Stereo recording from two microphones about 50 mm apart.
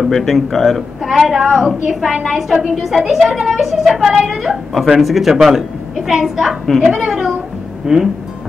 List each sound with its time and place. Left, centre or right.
0.1 s a woman's voice: centre